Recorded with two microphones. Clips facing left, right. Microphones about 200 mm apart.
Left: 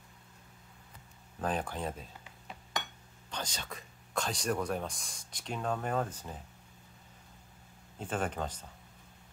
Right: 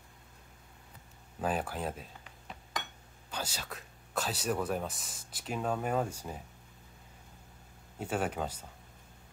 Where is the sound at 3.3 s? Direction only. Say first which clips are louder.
Right 1 dB; 5° right (ahead or behind).